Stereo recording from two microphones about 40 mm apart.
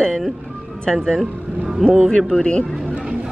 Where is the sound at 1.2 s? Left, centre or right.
Centre.